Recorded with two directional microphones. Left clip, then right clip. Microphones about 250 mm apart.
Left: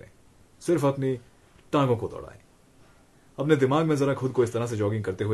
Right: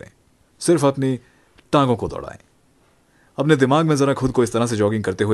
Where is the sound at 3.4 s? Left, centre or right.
Right.